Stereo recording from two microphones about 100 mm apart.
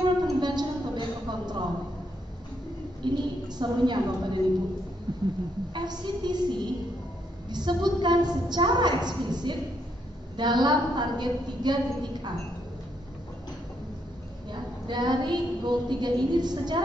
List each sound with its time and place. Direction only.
0.2 s music: 45° right (ahead or behind)
3.0 s a woman's voice: 45° right (ahead or behind)
5.1 s a sound: 45° right (ahead or behind)
5.7 s a woman's voice: 45° right (ahead or behind)
14.5 s a woman's voice: 45° right (ahead or behind)